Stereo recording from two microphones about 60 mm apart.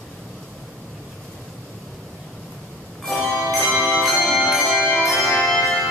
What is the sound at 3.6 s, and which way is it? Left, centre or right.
Music, right.